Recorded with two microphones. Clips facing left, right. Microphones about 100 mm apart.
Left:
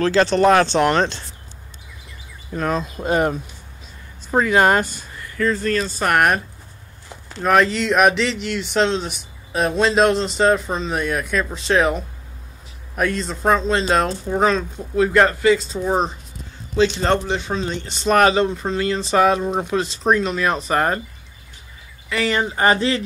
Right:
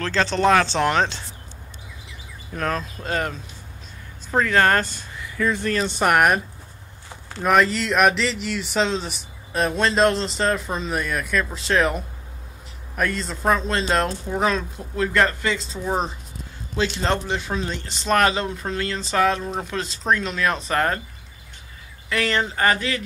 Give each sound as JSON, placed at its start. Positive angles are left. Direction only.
{"t": 0.0, "sound": "speech", "side_deg": 5}
{"t": 2.5, "sound": "speech", "side_deg": 10}
{"t": 4.8, "sound": "a sound", "side_deg": 0}
{"t": 5.5, "sound": "speech", "side_deg": -15}
{"t": 6.1, "sound": "speech", "side_deg": 0}
{"t": 7.4, "sound": "speech", "side_deg": 0}
{"t": 15.1, "sound": "speech", "side_deg": 15}
{"t": 15.5, "sound": "speech", "side_deg": 0}
{"t": 22.1, "sound": "speech", "side_deg": 5}
{"t": 22.6, "sound": "speech", "side_deg": 25}